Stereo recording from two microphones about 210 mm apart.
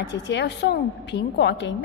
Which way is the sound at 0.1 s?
55° left (ahead or behind).